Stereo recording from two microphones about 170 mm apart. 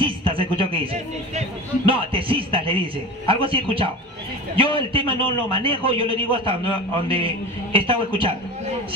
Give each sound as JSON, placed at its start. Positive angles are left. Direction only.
{"t": 0.0, "sound": "music", "side_deg": -30}
{"t": 1.9, "sound": "a man's voice", "side_deg": -30}